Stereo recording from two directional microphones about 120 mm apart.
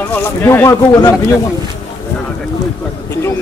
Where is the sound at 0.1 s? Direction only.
20° left (ahead or behind).